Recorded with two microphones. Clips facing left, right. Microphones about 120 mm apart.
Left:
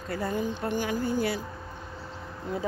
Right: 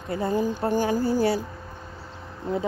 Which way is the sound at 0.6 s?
40° right (ahead or behind).